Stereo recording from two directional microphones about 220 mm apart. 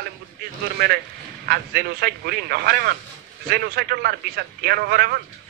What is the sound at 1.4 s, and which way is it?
A man's voice, 45° right (ahead or behind).